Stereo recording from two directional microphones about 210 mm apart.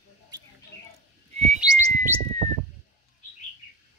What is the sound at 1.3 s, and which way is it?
Bird, 35° right (ahead or behind).